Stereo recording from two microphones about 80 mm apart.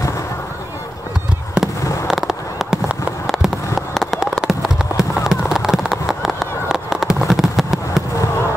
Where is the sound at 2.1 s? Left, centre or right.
Centre.